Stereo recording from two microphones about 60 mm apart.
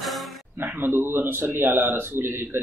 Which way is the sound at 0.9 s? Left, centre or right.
Right.